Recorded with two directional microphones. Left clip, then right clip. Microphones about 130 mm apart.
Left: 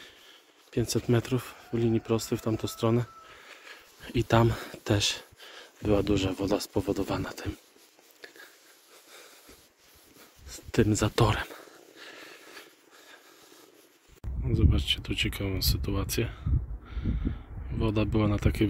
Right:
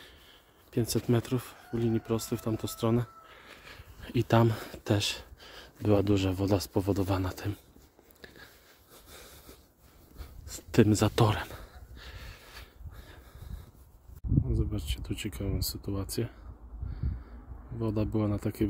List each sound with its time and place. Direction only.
0.0 s a sound: 25° right (ahead or behind)
1.1 s speech: 5° right (ahead or behind)
1.5 s speech: 15° left (ahead or behind)
2.6 s speech: centre (ahead or behind)
3.3 s speech: 30° right (ahead or behind)
9.1 s wheeze: 55° right (ahead or behind)
10.5 s speech: 60° right (ahead or behind)
11.1 s a sound: 25° right (ahead or behind)
14.5 s a sound: 10° right (ahead or behind)
15.7 s speech: 10° right (ahead or behind)
17.7 s speech: 10° right (ahead or behind)